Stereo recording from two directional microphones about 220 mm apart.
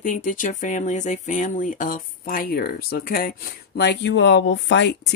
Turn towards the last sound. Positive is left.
turn(degrees=55)  # may be behind; listen again after turning